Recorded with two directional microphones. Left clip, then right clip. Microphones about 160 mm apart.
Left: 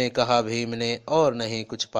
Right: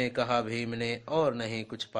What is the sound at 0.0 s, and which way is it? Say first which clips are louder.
Speech: left 7 dB; 30° left (ahead or behind).